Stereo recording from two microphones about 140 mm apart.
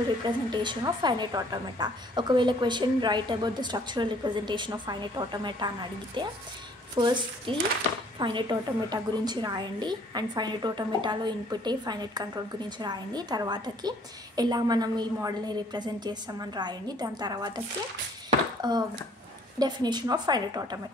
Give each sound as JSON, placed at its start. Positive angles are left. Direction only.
{"t": 0.2, "sound": "a woman's voice", "side_deg": -30}
{"t": 18.6, "sound": "a woman's voice", "side_deg": -30}